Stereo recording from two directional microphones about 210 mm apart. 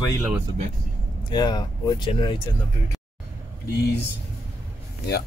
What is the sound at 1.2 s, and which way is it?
Speech, 20° left (ahead or behind).